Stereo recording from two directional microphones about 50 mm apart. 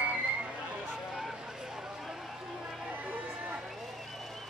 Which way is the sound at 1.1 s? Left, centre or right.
Centre.